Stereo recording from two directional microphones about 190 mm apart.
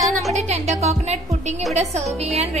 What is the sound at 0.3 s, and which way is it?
Speech, 35° right (ahead or behind).